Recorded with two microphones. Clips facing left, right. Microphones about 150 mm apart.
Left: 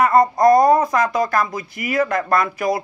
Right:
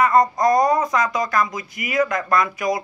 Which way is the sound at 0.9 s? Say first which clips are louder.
Left 2 dB; 60° left (ahead or behind).